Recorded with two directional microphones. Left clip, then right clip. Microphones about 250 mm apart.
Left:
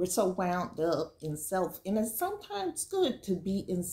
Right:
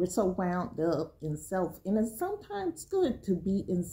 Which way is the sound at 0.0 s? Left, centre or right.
Centre.